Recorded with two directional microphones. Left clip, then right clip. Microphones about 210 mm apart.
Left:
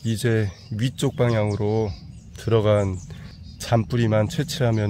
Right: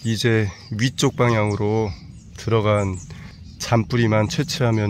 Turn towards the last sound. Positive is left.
turn(degrees=0)  # may be behind; listen again after turning